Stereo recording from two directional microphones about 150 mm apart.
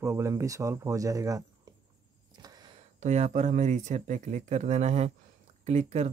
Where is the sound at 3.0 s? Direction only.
50° right (ahead or behind).